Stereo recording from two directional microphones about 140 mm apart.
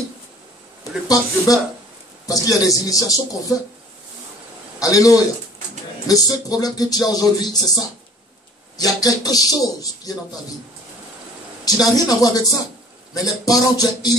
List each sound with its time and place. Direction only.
1.0 s speech: 25° left (ahead or behind)
4.7 s a man's voice: 25° left (ahead or behind)
11.6 s speech: 25° left (ahead or behind)